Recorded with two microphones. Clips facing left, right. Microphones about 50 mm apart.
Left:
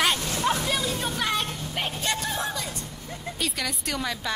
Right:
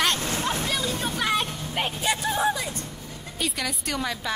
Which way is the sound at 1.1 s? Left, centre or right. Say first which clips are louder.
Right 2 dB; centre.